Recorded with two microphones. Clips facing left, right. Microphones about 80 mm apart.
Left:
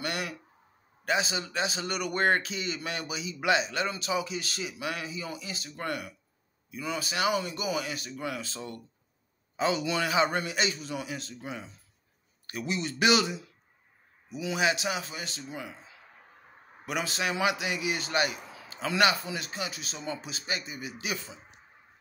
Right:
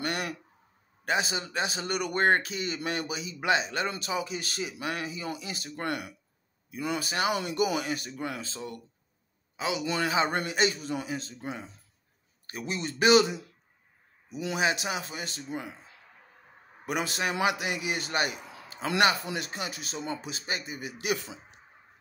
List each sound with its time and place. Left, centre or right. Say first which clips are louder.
0.0 s a sound: right 2 dB; right
1.0 s a man's voice: even; right
8.5 s speech: right 1 dB; centre
9.8 s a man's voice: left 1 dB; right
10.3 s a man's voice: right 2 dB; right
14.3 s a man's voice: even; right
18.9 s speech: right 1 dB; right